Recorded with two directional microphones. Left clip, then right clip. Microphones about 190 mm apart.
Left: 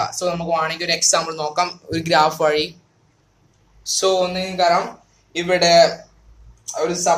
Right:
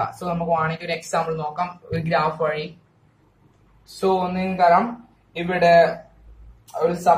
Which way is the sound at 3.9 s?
60° left (ahead or behind).